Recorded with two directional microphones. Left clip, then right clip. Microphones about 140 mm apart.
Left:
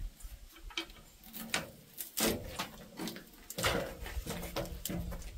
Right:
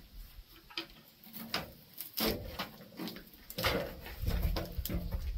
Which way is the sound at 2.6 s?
40° left (ahead or behind).